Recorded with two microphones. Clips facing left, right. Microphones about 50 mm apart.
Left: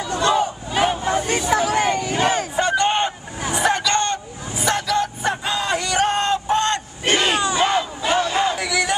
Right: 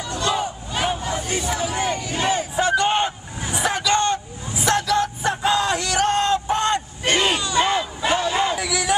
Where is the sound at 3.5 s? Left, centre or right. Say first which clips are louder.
Left 1 dB; centre.